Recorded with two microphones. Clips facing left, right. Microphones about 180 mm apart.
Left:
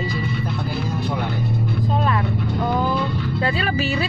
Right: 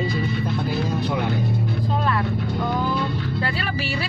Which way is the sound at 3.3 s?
25° left (ahead or behind).